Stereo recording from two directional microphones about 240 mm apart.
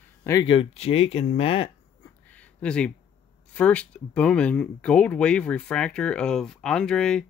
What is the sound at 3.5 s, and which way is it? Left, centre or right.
Speech, centre.